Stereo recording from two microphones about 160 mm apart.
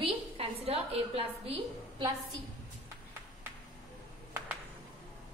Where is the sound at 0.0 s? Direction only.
40° right (ahead or behind).